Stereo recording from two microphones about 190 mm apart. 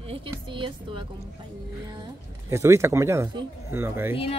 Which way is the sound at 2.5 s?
15° right (ahead or behind).